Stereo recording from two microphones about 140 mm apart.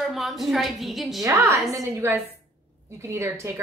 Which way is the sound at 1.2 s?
20° right (ahead or behind).